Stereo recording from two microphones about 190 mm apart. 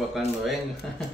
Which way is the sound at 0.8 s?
5° left (ahead or behind).